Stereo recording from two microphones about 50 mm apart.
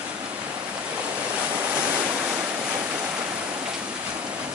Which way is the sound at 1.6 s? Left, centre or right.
Right.